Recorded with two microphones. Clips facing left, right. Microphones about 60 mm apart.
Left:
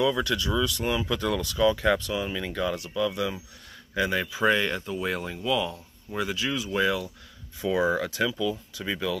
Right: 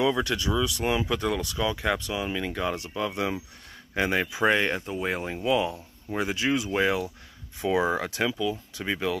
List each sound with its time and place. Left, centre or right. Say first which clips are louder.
0.0 s speech: even; right
0.5 s speech: right 1 dB; centre
2.5 s speech: left 1 dB; right
7.6 s speech: even; right
8.1 s speech: even; right